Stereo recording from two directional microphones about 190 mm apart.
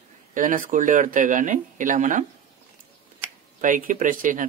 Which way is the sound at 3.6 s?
45° right (ahead or behind).